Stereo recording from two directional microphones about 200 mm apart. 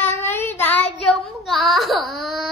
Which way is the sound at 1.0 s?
Centre (ahead or behind).